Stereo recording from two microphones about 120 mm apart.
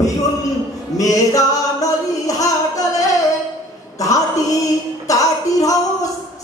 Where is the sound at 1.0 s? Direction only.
30° left (ahead or behind).